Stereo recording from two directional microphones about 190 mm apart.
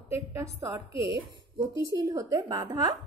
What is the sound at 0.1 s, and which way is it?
Speech, 15° right (ahead or behind).